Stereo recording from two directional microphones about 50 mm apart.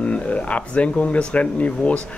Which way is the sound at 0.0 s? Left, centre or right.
Left.